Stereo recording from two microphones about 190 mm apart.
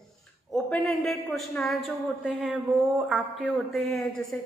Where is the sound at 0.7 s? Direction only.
Centre (ahead or behind).